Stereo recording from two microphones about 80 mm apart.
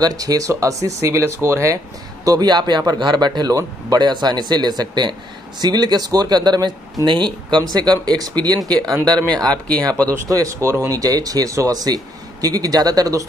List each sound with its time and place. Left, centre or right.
0.0 s speech: right
2.2 s speech: right
7.1 s speech: right
7.7 s speech: right
10.0 s speech: right